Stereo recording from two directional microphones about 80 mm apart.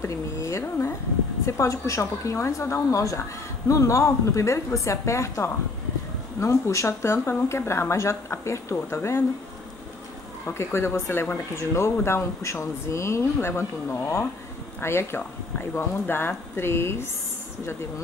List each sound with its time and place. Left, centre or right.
0.0 s a sound: left
1.4 s a woman's voice: left
10.4 s a woman's voice: left